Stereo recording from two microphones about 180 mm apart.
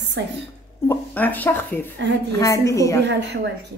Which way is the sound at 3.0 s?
75° right (ahead or behind).